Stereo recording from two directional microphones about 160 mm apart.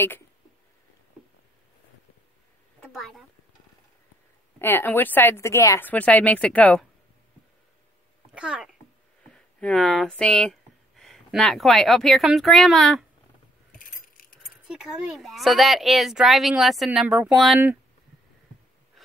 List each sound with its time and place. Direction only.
2.9 s speech: centre (ahead or behind)
4.6 s speech: 15° left (ahead or behind)
8.4 s speech: 5° right (ahead or behind)
9.3 s speech: 5° left (ahead or behind)
13.7 s keys jangling: 60° left (ahead or behind)
14.7 s speech: 5° right (ahead or behind)
19.0 s a sound: centre (ahead or behind)